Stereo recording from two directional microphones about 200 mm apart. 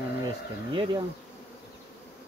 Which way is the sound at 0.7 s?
25° right (ahead or behind).